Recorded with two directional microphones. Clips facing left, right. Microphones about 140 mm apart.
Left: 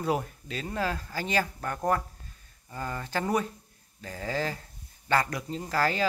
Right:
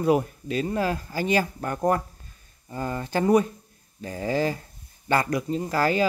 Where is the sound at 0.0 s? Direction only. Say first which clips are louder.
Right 7 dB; 10° right (ahead or behind).